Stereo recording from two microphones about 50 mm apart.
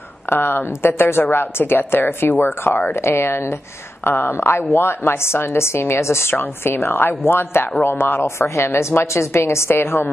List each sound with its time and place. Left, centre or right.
0.3 s a woman's voice: left
4.0 s a woman's voice: left
6.3 s a woman's voice: left